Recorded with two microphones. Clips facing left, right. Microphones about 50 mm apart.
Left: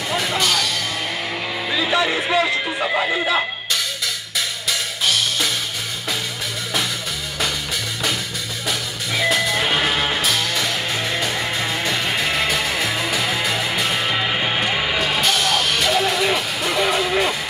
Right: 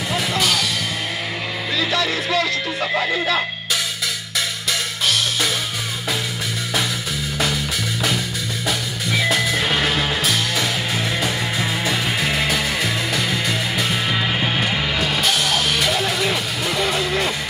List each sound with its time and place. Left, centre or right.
0.1 s music: centre
1.7 s music: centre
2.8 s speech: centre
4.6 s music: centre
8.6 s music: centre